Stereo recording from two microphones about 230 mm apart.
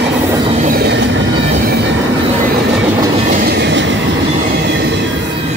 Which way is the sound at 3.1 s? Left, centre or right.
Right.